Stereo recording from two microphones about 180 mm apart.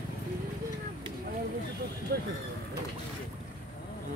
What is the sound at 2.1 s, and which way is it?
Speech, 60° right (ahead or behind).